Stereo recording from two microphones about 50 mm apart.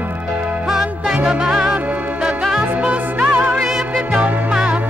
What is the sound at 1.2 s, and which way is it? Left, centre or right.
Music, centre.